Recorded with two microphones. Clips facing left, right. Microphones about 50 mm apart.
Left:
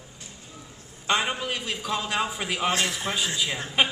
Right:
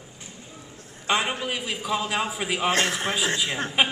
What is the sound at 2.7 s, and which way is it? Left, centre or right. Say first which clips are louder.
Speech: right 3 dB; right.